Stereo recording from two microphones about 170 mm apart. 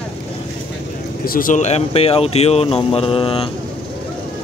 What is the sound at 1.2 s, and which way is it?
Speech, 55° left (ahead or behind).